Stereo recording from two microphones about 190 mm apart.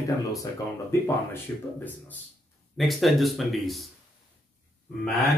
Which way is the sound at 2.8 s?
Centre (ahead or behind).